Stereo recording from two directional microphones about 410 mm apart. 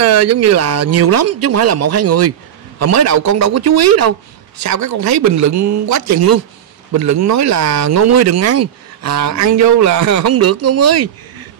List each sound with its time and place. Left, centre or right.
0.0 s speech: right